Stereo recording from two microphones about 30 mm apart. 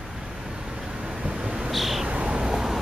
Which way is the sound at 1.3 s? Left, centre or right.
Right.